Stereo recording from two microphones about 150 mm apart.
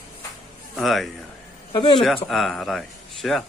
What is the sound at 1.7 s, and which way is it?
Speech, 30° left (ahead or behind).